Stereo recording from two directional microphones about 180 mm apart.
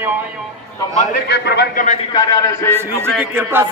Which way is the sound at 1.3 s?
70° left (ahead or behind).